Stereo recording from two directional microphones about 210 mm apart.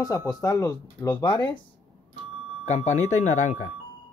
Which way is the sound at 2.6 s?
35° left (ahead or behind).